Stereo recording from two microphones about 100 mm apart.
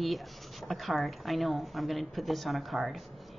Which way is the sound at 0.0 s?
Centre (ahead or behind).